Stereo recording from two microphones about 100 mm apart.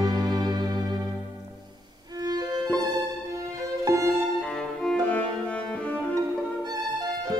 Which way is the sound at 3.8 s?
30° right (ahead or behind).